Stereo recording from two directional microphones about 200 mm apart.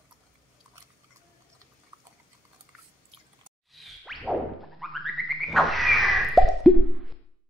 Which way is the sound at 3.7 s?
Centre (ahead or behind).